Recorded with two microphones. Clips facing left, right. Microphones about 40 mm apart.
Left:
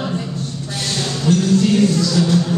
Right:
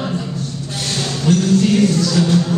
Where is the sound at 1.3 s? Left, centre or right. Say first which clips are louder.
Right 1 dB; right.